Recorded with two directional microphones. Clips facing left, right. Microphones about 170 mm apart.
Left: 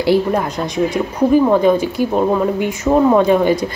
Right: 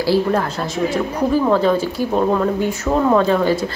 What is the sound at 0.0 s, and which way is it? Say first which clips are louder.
Speech: left 2 dB; 15° left (ahead or behind).